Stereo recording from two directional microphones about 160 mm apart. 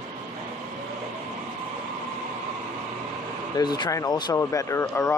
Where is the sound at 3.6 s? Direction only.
25° left (ahead or behind).